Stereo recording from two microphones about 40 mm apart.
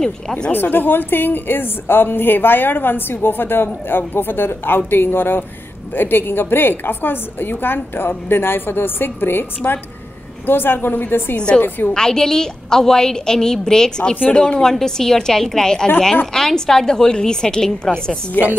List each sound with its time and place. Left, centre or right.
0.5 s a woman's voice: left
11.3 s a woman's voice: left
11.9 s a woman's voice: centre
18.4 s a woman's voice: left